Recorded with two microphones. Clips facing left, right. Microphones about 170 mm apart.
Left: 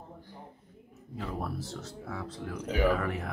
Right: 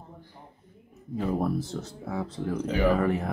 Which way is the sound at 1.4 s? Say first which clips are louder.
Right 8 dB; 20° right (ahead or behind).